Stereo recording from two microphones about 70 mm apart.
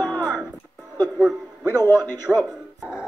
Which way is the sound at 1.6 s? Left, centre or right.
Right.